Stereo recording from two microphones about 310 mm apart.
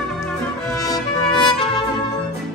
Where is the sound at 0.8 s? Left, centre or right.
Centre.